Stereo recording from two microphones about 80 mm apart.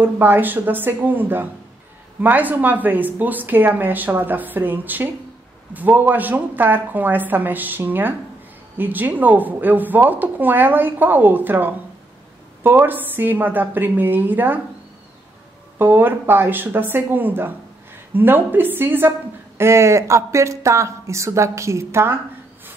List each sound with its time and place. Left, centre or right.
0.0 s speech: right
15.8 s a woman's voice: right